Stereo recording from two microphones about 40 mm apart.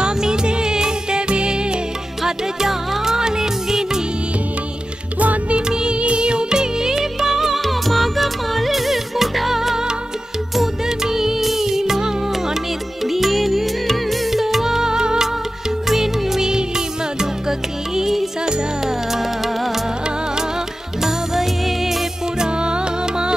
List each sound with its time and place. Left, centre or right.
0.0 s music: centre
2.2 s music: centre
5.2 s music: right
5.7 s music: right
14.9 s music: centre
15.9 s music: centre
21.0 s music: centre
22.4 s music: right